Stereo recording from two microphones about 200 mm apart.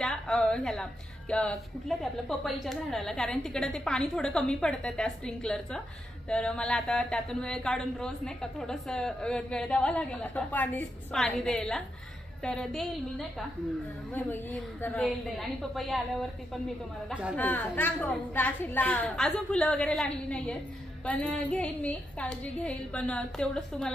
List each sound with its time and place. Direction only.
0.0 s a woman's voice: 5° left (ahead or behind)
17.4 s a woman's voice: 10° left (ahead or behind)